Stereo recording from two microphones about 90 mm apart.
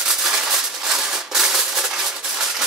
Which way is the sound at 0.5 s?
5° right (ahead or behind).